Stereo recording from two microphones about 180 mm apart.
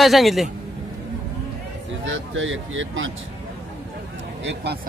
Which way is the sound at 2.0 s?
90° right.